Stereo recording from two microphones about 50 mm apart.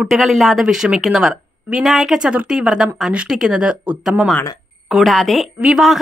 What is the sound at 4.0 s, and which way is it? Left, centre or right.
A woman's voice, centre.